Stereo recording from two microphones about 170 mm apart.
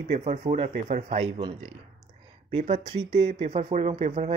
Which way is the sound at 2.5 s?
40° right (ahead or behind).